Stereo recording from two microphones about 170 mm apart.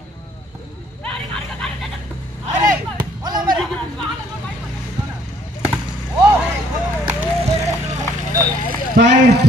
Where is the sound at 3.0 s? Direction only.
25° right (ahead or behind).